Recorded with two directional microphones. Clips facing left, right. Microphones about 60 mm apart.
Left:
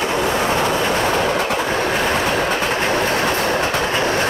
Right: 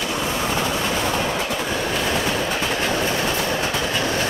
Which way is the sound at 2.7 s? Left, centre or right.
Left.